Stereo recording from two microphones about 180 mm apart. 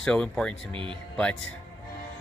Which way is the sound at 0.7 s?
30° right (ahead or behind).